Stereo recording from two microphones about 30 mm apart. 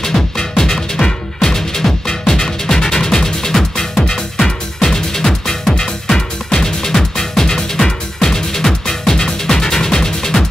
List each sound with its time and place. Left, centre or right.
0.0 s music: centre